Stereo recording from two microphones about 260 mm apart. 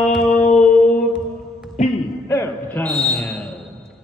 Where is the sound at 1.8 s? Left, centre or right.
Left.